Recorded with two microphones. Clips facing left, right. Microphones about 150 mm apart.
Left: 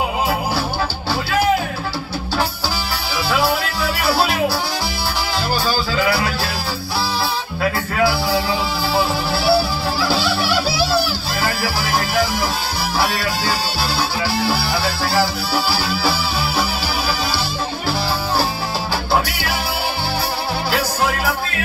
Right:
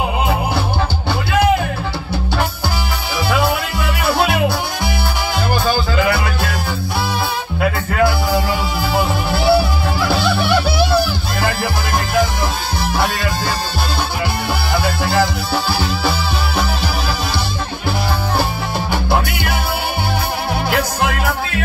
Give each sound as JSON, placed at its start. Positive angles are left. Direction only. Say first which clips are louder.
{"t": 4.0, "sound": "music", "louder": "right 2 dB", "side_deg": -20}
{"t": 6.0, "sound": "music", "louder": "right 1 dB", "side_deg": 5}
{"t": 8.9, "sound": "music", "louder": "right 1 dB", "side_deg": -20}
{"t": 15.1, "sound": "music", "louder": "right 1 dB", "side_deg": 5}